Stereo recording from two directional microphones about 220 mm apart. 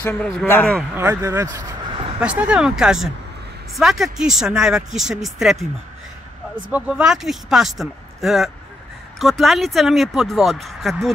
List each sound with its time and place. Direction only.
0.0 s speech: 5° left (ahead or behind)
0.9 s speech: 10° right (ahead or behind)
2.1 s speech: 5° right (ahead or behind)
6.7 s speech: 5° right (ahead or behind)